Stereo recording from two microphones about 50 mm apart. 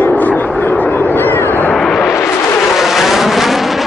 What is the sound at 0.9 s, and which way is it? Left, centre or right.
Vehicle, left.